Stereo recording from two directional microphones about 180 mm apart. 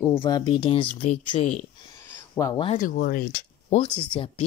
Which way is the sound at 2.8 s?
50° left (ahead or behind).